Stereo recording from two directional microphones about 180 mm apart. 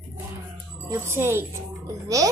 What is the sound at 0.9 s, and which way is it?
Speech, 15° right (ahead or behind).